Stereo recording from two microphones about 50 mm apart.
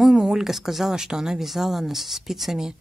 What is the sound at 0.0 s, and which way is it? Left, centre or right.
Speech, centre.